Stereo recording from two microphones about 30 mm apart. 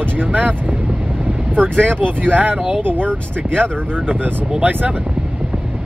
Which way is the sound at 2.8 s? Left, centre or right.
Right.